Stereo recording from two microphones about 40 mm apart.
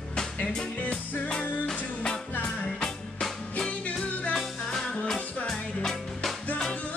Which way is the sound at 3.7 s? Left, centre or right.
Left.